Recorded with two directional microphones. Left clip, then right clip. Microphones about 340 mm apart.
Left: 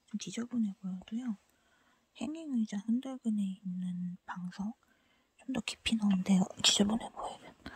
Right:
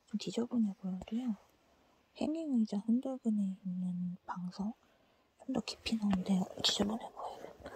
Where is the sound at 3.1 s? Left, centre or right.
Left.